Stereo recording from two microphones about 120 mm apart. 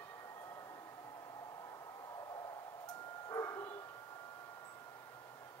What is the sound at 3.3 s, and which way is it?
Bow-wow, 25° left (ahead or behind).